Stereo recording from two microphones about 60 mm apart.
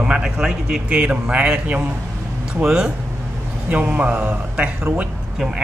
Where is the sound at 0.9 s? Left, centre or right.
Centre.